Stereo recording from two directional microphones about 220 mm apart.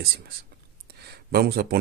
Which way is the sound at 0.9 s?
45° right (ahead or behind).